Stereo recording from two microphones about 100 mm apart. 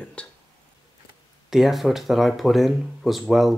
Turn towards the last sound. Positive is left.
turn(degrees=0)  # may be behind; listen again after turning